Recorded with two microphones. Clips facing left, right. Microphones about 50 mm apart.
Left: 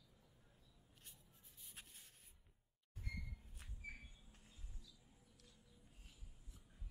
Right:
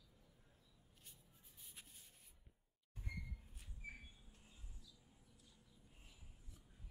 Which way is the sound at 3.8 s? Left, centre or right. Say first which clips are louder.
Even; centre.